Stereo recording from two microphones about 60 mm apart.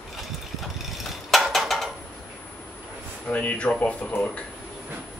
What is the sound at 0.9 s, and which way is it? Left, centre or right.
Mechanisms, centre.